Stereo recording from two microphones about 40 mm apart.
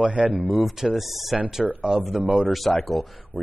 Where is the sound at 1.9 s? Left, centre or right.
Right.